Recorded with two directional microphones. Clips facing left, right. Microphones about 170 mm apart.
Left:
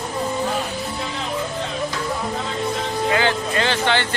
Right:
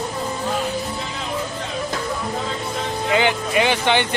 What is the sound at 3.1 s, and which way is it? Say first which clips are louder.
Speech: right 4 dB; 15° right (ahead or behind).